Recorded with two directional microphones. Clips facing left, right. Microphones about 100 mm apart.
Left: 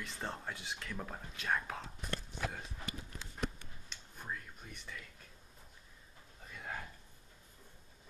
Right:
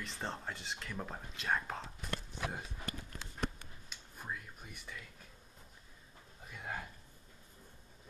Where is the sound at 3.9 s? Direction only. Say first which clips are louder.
Even; 5° right (ahead or behind).